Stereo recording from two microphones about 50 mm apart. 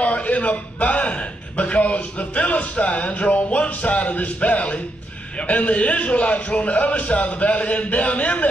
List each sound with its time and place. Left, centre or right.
0.0 s a man's voice: left